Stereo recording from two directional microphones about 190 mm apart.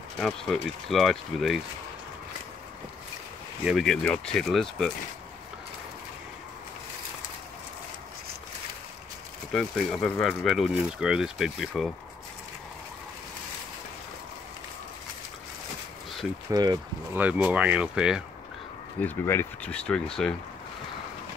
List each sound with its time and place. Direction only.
0.2 s speech: centre (ahead or behind)
3.6 s speech: centre (ahead or behind)
9.5 s speech: centre (ahead or behind)
16.4 s speech: 20° right (ahead or behind)
17.2 s speech: 5° right (ahead or behind)
18.9 s speech: 10° left (ahead or behind)